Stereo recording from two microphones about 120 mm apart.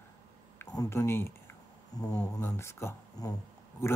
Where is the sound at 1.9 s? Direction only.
30° left (ahead or behind).